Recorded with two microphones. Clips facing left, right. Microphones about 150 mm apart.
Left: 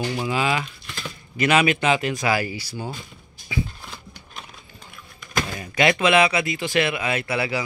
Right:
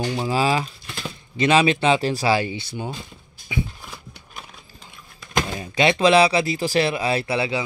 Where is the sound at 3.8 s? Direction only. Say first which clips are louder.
Even; 5° right (ahead or behind).